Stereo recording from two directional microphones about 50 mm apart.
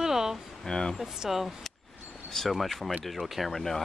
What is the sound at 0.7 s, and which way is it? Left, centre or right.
Speech, centre.